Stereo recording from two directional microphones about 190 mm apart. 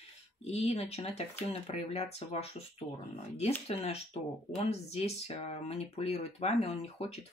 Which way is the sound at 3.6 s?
35° left (ahead or behind).